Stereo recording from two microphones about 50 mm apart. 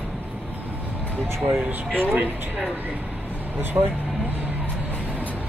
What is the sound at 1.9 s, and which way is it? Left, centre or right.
Speech, right.